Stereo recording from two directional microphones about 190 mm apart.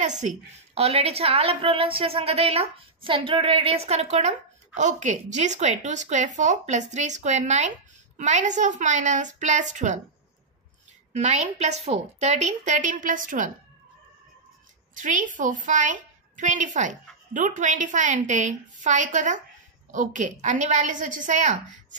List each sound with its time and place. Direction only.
0.0 s a woman's voice: 40° right (ahead or behind)
11.1 s a woman's voice: 35° right (ahead or behind)
15.0 s a woman's voice: 40° right (ahead or behind)